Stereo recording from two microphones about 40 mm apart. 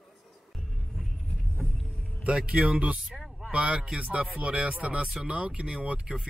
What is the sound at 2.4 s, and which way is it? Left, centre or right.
Speech, right.